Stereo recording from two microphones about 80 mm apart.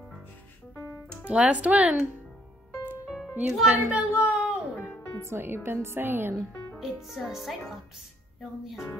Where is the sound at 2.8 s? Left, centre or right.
Centre.